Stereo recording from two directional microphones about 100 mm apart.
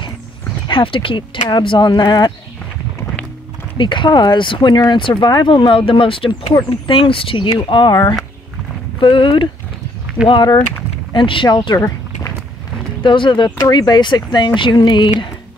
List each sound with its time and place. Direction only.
0.7 s speech: 60° left (ahead or behind)
3.7 s speech: 55° left (ahead or behind)
13.0 s speech: 55° left (ahead or behind)